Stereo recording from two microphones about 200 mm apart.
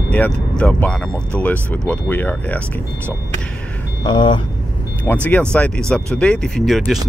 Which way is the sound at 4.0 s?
25° left (ahead or behind).